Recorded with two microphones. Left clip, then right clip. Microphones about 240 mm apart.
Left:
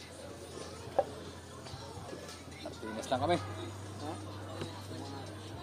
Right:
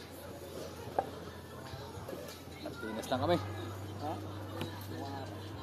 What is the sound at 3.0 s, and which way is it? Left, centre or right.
Speech, centre.